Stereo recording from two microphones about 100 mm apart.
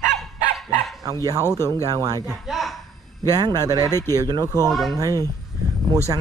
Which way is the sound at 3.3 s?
40° right (ahead or behind).